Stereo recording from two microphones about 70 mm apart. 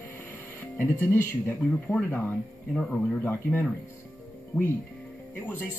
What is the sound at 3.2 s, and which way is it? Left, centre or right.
Speech, left.